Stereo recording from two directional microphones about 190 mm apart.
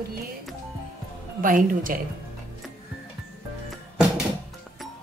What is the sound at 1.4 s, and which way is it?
Speech, 45° right (ahead or behind).